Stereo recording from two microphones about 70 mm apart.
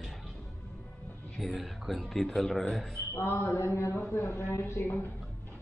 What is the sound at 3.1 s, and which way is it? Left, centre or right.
A man's voice, left.